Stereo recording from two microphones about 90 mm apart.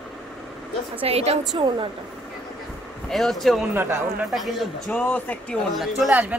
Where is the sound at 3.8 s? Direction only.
25° right (ahead or behind).